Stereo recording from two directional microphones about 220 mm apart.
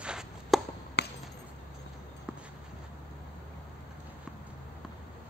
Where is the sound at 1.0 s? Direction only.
50° left (ahead or behind).